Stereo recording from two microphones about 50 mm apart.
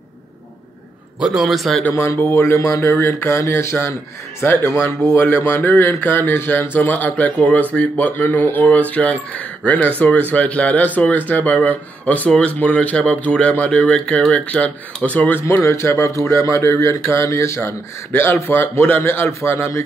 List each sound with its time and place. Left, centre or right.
1.2 s a man's voice: centre
2.1 s a sound: left
3.5 s speech: left
12.3 s speech: left
15.6 s speech: left
17.6 s speech: left